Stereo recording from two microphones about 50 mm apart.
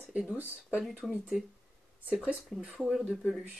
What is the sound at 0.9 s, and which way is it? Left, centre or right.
Speech, centre.